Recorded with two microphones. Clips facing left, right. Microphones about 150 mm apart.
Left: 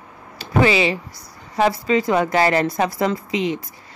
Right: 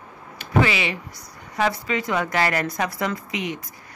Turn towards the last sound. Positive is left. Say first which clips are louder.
# left 6 dB
turn(degrees=30)  # may be behind; listen again after turning